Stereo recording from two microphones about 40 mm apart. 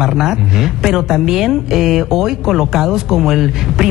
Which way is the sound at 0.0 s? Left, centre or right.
Centre.